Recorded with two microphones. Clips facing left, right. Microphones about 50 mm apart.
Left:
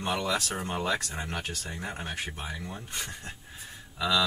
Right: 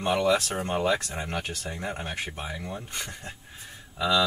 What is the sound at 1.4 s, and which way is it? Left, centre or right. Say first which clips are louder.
Speech: right 3 dB; right.